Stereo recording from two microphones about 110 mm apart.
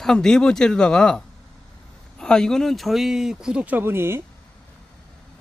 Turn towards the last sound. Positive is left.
turn(degrees=-20)  # may be behind; listen again after turning